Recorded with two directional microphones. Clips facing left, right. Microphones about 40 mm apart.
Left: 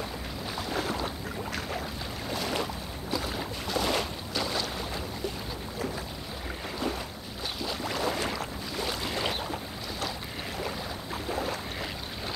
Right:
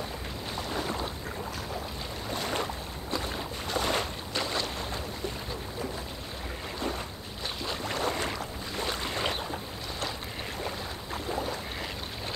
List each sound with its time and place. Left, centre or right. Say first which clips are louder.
3.8 s boat: even; centre
8.7 s boat: even; centre